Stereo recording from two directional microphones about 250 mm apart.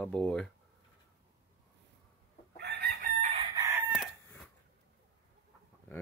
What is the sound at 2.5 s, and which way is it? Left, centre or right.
Chicken, right.